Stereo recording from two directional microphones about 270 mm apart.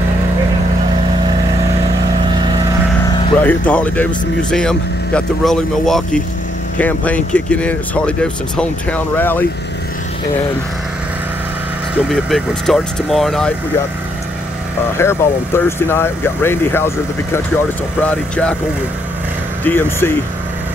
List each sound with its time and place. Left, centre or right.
3.1 s vehicle: centre
3.3 s speech: centre
12.1 s speech: centre
15.0 s speech: centre
19.6 s speech: centre